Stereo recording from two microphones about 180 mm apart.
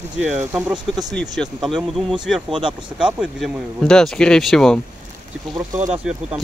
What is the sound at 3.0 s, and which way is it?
Speech, 5° right (ahead or behind).